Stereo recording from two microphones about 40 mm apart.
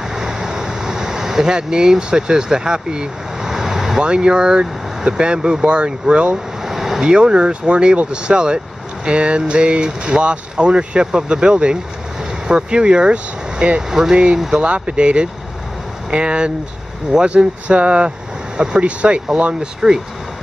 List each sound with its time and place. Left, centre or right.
0.1 s vehicle: centre
4.0 s speech: right
6.6 s vehicle: centre
7.0 s speech: right
14.1 s speech: right